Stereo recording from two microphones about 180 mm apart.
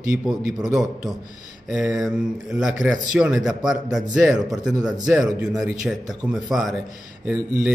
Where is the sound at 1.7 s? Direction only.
5° right (ahead or behind).